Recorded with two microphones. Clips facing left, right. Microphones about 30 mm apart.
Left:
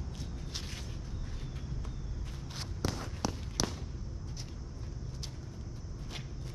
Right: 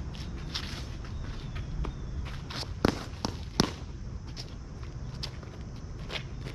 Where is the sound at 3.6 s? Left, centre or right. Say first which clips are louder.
Right 7 dB; right.